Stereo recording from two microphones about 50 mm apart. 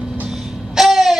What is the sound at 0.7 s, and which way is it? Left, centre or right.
Babbling, centre.